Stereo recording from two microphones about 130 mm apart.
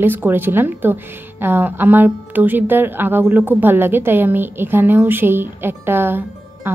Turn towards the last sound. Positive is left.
turn(degrees=-15)  # may be behind; listen again after turning